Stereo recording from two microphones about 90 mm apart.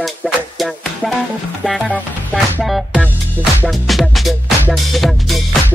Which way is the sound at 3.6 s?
Centre (ahead or behind).